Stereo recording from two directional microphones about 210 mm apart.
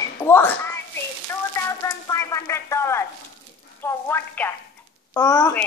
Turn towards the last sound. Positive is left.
turn(degrees=15)  # may be behind; listen again after turning